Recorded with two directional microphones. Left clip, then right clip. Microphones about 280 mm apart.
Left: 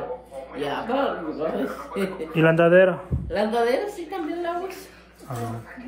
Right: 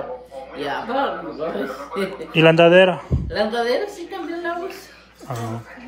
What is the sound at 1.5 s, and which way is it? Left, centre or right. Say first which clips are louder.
A man's voice: right 2 dB; centre.